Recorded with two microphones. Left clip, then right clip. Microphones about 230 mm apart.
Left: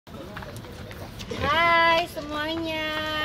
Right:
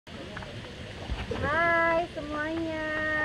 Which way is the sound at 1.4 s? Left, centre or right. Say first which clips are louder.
Left 5 dB; centre.